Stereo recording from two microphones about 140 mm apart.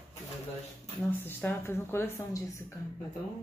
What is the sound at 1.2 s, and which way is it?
Speech, 15° left (ahead or behind).